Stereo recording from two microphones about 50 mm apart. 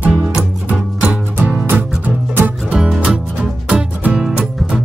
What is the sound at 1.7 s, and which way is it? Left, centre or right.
Music, right.